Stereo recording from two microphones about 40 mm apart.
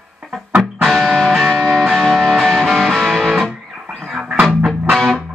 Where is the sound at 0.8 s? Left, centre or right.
Centre.